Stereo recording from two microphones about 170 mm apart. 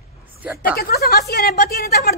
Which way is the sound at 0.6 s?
65° left (ahead or behind).